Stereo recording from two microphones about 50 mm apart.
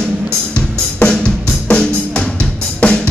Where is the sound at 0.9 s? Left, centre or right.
Left.